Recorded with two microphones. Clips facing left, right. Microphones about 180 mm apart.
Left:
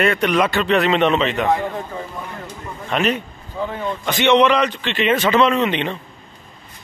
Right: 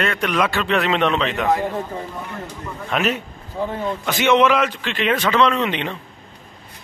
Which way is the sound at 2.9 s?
Centre (ahead or behind).